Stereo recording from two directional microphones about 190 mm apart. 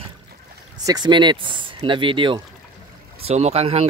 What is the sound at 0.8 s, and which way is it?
Speech, 20° right (ahead or behind).